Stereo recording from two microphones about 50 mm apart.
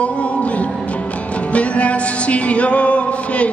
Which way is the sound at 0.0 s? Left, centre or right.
Left.